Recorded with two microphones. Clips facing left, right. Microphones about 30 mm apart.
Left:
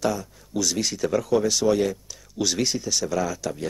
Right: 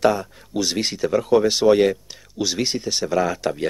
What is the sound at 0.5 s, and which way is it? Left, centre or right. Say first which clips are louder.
Speech: right 2 dB; right.